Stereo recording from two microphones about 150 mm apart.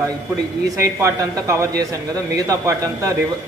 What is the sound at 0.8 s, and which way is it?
A man's voice, 20° right (ahead or behind).